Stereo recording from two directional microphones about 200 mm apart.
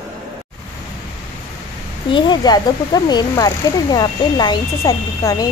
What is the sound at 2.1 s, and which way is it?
Speech, 25° left (ahead or behind).